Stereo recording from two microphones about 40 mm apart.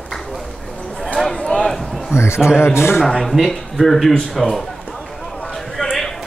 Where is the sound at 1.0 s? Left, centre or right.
Centre.